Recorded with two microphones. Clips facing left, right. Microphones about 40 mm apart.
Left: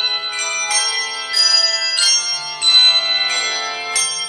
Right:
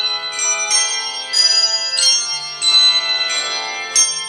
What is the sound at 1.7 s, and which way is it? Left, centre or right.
Music, left.